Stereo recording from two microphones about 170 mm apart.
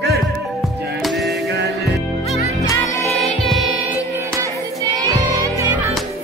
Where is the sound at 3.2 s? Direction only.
Centre (ahead or behind).